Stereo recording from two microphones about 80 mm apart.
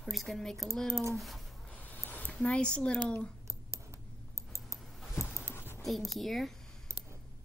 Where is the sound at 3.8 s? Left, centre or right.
Right.